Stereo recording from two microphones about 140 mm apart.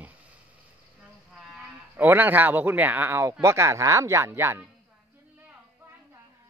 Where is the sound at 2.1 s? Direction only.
15° right (ahead or behind).